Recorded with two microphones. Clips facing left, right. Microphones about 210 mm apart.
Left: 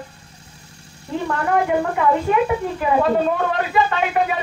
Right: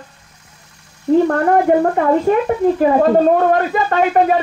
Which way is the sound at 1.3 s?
45° right (ahead or behind).